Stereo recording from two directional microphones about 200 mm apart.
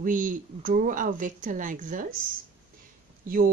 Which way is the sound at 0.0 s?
40° right (ahead or behind).